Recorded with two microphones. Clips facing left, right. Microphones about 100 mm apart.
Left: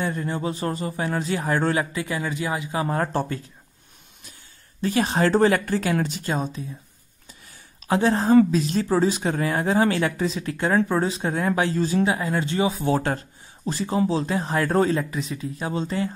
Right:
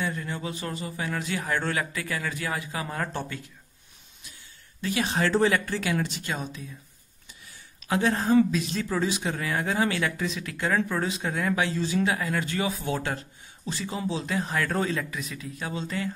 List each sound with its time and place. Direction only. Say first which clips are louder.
0.0 s speech: left 5 dB; 35° left (ahead or behind); by 2.8 s 20° left (ahead or behind)
2.8 s speech: left 7 dB; 35° left (ahead or behind)
4.8 s speech: left 5 dB; 40° left (ahead or behind)
7.8 s a woman's voice: left 4 dB; 35° left (ahead or behind)
12.0 s speech: left 4 dB; 25° left (ahead or behind)